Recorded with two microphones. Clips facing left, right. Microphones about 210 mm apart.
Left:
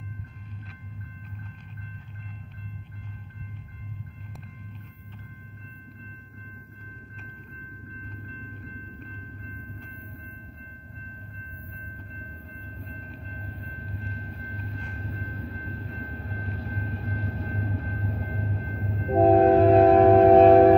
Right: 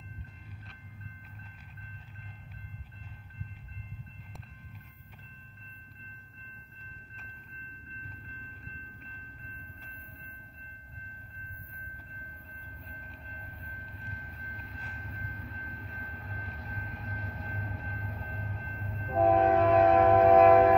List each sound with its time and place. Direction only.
13.3 s vehicle: 30° left (ahead or behind)